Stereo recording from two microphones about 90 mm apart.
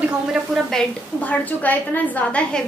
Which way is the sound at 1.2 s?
15° left (ahead or behind).